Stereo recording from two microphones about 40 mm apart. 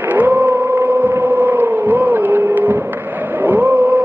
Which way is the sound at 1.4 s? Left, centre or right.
Right.